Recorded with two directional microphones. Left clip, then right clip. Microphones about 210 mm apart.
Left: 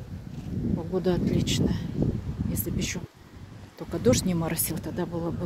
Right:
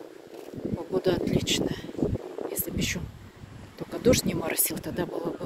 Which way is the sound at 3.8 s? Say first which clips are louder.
Right 1 dB; 15° left (ahead or behind).